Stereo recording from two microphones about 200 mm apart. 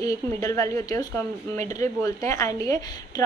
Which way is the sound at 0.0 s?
15° left (ahead or behind).